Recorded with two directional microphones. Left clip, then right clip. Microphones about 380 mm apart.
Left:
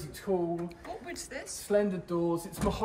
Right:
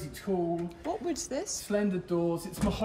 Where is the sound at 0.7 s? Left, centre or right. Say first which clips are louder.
Right 7 dB; centre.